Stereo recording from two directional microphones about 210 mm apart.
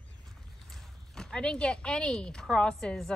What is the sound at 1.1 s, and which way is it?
A woman's voice, 5° left (ahead or behind).